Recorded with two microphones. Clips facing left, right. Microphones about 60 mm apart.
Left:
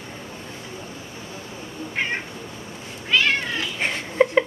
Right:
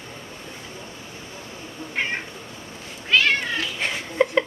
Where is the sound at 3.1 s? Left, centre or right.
Centre.